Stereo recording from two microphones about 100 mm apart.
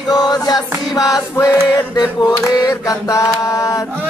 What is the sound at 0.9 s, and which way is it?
Mantra, 35° left (ahead or behind).